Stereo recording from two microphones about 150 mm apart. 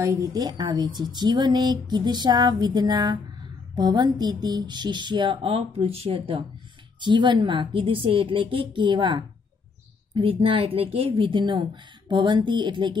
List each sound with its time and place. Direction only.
0.0 s a woman's voice: 20° right (ahead or behind)